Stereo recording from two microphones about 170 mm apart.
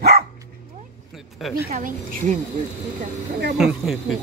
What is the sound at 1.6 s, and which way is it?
Speech, 50° right (ahead or behind).